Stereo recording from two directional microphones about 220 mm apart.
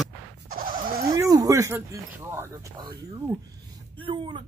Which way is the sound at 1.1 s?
15° right (ahead or behind).